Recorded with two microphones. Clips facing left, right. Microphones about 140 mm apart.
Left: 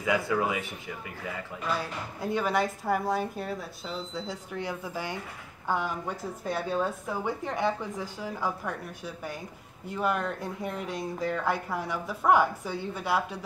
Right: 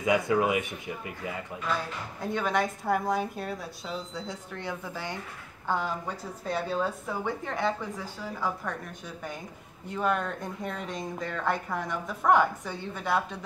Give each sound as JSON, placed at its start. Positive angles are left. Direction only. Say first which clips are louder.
{"t": 0.0, "sound": "speech", "louder": "right 2 dB", "side_deg": -20}
{"t": 2.3, "sound": "a woman's voice", "louder": "left 1 dB", "side_deg": 5}
{"t": 4.5, "sound": "a woman's voice", "louder": "left 2 dB", "side_deg": 10}
{"t": 7.2, "sound": "speech", "louder": "left 1 dB", "side_deg": 15}